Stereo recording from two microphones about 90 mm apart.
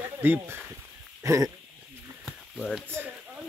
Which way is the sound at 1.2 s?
35° right (ahead or behind).